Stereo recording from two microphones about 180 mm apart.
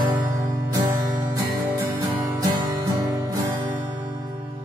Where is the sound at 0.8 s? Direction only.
15° right (ahead or behind).